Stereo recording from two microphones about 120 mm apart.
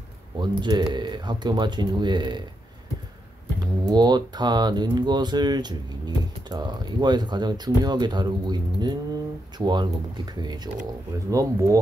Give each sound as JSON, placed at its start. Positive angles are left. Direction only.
{"t": 0.4, "sound": "speech", "side_deg": -35}
{"t": 3.5, "sound": "speech", "side_deg": -35}